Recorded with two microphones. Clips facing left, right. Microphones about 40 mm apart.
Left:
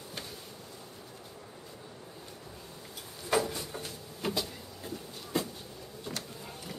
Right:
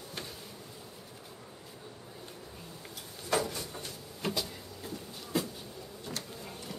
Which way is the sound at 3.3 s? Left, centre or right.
Centre.